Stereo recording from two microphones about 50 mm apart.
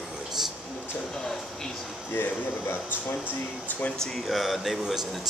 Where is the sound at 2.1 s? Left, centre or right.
Left.